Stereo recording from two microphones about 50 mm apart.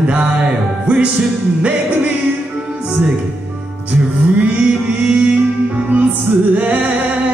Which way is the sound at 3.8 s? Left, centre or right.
Right.